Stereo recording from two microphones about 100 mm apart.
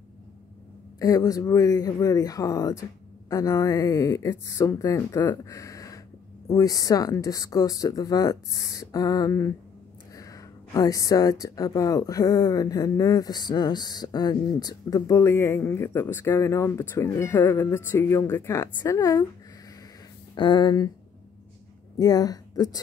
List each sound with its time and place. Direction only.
0.9 s speech: 35° left (ahead or behind)
20.3 s speech: 50° left (ahead or behind)
21.9 s speech: 40° left (ahead or behind)